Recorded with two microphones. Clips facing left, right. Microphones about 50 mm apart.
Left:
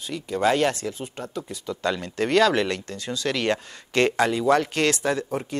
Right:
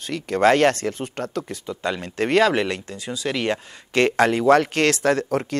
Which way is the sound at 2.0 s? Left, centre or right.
Right.